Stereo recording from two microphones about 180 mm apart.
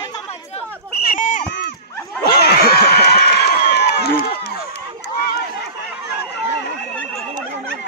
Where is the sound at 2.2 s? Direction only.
60° left (ahead or behind).